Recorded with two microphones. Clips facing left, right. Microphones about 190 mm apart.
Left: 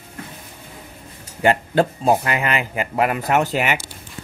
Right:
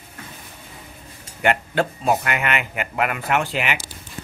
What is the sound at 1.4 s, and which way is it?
Speech, 35° left (ahead or behind).